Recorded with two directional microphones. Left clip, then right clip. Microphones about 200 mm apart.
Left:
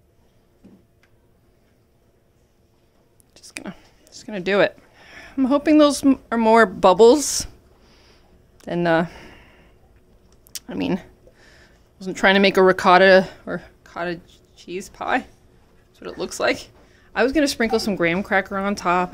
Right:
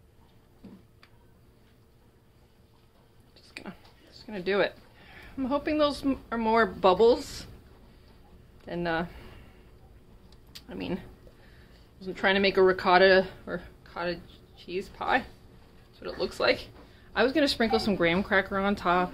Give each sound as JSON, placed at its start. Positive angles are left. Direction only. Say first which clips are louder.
{"t": 3.3, "sound": "speech", "louder": "left 8 dB", "side_deg": 55}
{"t": 8.5, "sound": "speech", "louder": "left 11 dB", "side_deg": 60}
{"t": 10.5, "sound": "speech", "louder": "left 10 dB", "side_deg": 60}
{"t": 17.0, "sound": "a woman's voice", "louder": "left 6 dB", "side_deg": 35}